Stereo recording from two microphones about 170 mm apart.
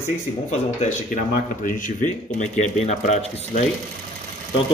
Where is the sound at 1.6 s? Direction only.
50° left (ahead or behind).